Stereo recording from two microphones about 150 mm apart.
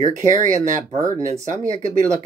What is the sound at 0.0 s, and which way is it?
Speech, 55° right (ahead or behind).